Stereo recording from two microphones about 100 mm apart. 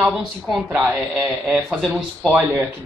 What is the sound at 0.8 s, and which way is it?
A man's voice, 15° right (ahead or behind).